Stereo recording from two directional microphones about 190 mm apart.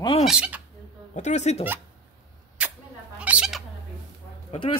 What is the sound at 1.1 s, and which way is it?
Speech, 35° left (ahead or behind).